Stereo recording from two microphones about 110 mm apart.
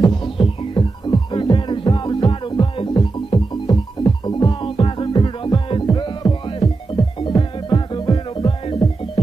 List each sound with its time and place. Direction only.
0.0 s music: 45° left (ahead or behind)
7.7 s music: 40° left (ahead or behind); by 9.2 s 55° left (ahead or behind)